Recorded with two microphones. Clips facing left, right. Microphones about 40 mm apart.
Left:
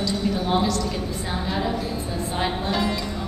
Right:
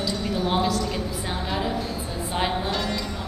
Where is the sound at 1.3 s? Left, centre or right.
Centre.